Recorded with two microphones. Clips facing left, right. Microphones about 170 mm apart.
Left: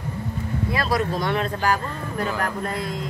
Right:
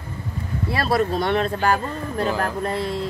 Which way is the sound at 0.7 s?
30° right (ahead or behind).